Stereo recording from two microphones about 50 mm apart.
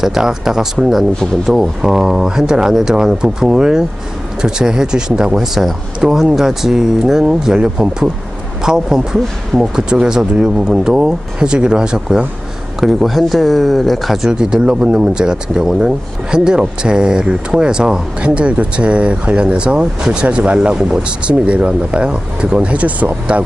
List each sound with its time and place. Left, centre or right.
0.0 s speech: centre
12.8 s speech: centre
14.3 s speech: centre